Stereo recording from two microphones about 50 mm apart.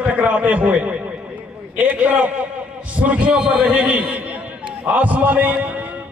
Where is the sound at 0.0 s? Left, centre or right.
Right.